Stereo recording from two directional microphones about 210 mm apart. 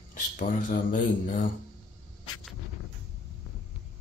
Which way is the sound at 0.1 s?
40° left (ahead or behind).